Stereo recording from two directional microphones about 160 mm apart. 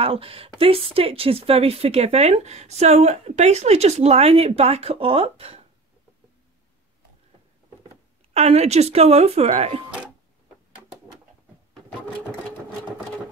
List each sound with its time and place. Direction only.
0.0 s speech: 35° right (ahead or behind)
8.3 s speech: 40° right (ahead or behind)
12.2 s sewing machine: 5° left (ahead or behind)